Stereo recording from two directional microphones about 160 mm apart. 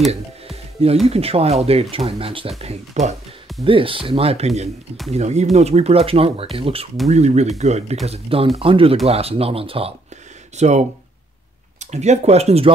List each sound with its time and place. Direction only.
1.0 s speech: 40° right (ahead or behind)
3.6 s speech: 35° right (ahead or behind)